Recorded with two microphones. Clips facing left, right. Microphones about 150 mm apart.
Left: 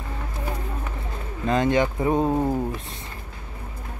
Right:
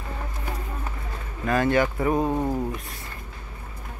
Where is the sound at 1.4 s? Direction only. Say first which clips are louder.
Left 1 dB; 20° left (ahead or behind).